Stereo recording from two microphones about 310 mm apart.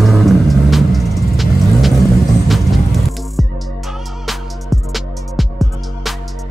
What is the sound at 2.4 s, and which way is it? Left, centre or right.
Music, centre.